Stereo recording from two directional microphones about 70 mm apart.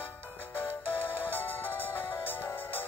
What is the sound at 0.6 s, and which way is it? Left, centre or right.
Music, left.